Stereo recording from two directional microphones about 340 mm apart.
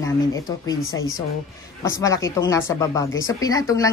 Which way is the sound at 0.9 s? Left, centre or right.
Left.